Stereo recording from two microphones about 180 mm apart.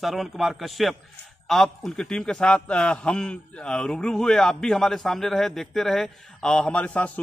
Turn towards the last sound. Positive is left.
turn(degrees=5)  # may be behind; listen again after turning